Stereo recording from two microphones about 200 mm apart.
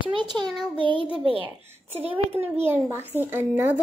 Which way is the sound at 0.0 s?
25° right (ahead or behind).